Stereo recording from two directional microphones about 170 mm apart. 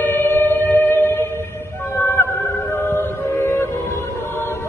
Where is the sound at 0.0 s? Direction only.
10° left (ahead or behind).